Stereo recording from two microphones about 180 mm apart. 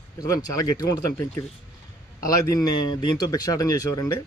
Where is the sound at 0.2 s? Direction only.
20° left (ahead or behind).